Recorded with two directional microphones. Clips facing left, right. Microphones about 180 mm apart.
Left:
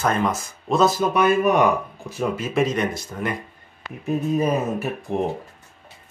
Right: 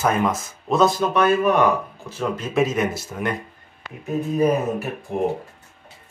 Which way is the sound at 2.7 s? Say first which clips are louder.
Right 1 dB; 5° right (ahead or behind).